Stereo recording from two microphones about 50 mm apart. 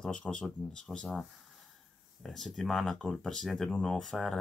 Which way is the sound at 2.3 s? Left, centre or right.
Centre.